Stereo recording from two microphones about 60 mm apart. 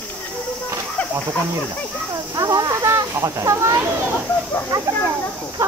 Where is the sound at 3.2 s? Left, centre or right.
Right.